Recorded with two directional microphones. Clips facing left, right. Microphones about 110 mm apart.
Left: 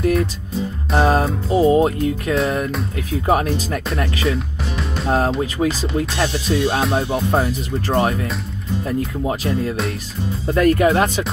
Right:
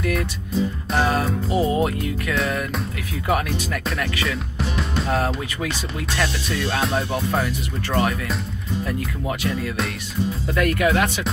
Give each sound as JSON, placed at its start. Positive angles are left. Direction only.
{"t": 0.9, "sound": "music", "side_deg": 35}
{"t": 5.0, "sound": "speech", "side_deg": 35}
{"t": 5.4, "sound": "music", "side_deg": 30}
{"t": 9.3, "sound": "music", "side_deg": 30}